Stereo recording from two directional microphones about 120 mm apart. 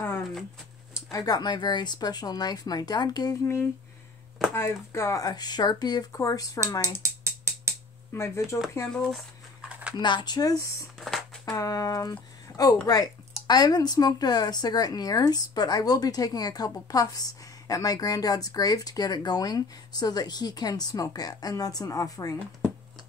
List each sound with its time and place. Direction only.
1.1 s speech: 30° left (ahead or behind)
4.6 s speech: 25° left (ahead or behind)
7.0 s mechanisms: 25° right (ahead or behind)
8.1 s speech: 25° left (ahead or behind)
9.7 s a sound: 10° right (ahead or behind)
9.9 s speech: 40° left (ahead or behind)
11.0 s a sound: centre (ahead or behind)
11.5 s speech: 30° left (ahead or behind)